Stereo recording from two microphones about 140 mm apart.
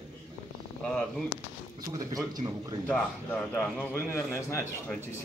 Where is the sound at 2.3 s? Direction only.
25° right (ahead or behind).